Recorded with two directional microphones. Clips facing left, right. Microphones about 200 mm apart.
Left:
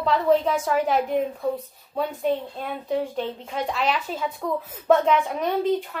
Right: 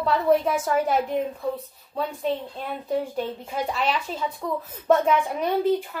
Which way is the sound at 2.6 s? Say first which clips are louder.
Left 1 dB; 5° right (ahead or behind).